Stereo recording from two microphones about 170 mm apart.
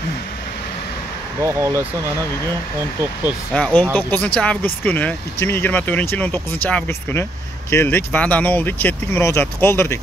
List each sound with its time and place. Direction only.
1.4 s speech: 20° right (ahead or behind)
3.5 s speech: 5° left (ahead or behind)